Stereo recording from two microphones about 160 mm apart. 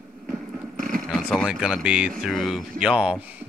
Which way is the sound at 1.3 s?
Centre (ahead or behind).